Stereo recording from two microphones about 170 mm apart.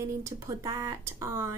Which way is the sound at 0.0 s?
15° right (ahead or behind).